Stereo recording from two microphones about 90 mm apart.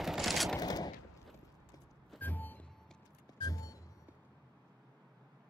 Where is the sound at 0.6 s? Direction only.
45° left (ahead or behind).